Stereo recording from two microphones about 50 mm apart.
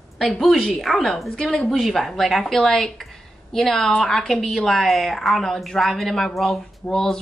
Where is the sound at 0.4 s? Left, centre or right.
Centre.